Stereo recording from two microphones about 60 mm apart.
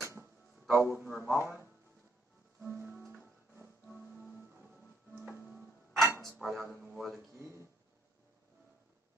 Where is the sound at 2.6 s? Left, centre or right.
Right.